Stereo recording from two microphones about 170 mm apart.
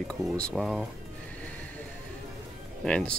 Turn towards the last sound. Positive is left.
turn(degrees=5)  # may be behind; listen again after turning